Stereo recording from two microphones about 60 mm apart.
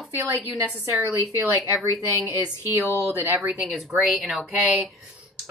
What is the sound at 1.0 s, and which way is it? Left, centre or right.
Speech, left.